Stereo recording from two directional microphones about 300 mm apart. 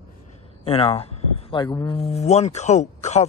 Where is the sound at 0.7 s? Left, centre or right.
Centre.